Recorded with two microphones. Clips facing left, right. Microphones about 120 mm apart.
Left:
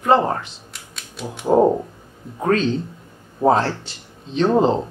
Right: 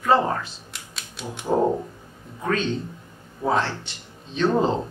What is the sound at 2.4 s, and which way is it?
Speech, 40° left (ahead or behind).